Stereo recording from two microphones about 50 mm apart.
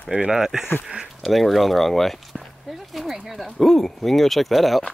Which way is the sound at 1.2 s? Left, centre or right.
Centre.